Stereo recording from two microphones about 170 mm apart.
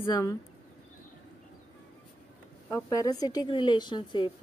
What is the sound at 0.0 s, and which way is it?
Speech, 20° left (ahead or behind).